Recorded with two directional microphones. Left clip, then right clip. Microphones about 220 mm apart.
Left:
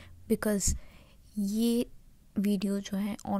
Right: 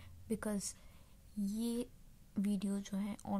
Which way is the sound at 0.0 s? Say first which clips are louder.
Left 11 dB; 25° left (ahead or behind).